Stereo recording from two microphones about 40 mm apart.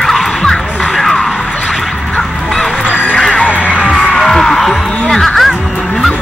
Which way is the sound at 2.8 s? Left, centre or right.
Left.